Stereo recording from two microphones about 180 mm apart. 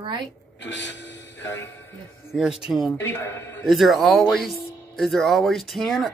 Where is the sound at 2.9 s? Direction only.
85° left.